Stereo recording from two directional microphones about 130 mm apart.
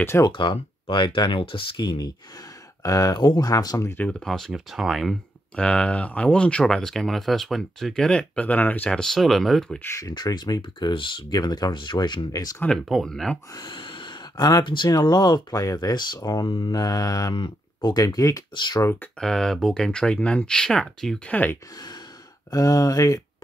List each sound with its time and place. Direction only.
0.0 s speech: 20° left (ahead or behind)
0.3 s speech: 40° left (ahead or behind); by 4.0 s 25° left (ahead or behind)
4.0 s speech: 5° left (ahead or behind)
9.8 s speech: 20° left (ahead or behind)
12.6 s speech: centre (ahead or behind)
13.5 s speech: 35° left (ahead or behind)
18.8 s speech: 20° left (ahead or behind)
19.1 s speech: 5° left (ahead or behind)
21.7 s sigh: 30° left (ahead or behind)
22.5 s speech: 25° left (ahead or behind)